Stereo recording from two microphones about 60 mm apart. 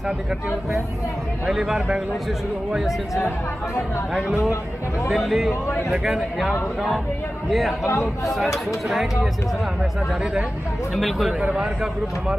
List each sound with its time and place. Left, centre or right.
1.4 s a man's voice: centre
5.1 s speech: centre
7.8 s speech: left
8.8 s speech: centre
11.0 s speech: centre